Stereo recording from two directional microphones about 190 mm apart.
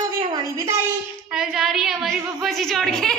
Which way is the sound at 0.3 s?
20° right (ahead or behind).